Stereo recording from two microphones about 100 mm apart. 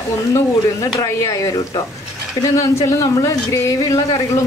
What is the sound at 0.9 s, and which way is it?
A woman's voice, 30° left (ahead or behind).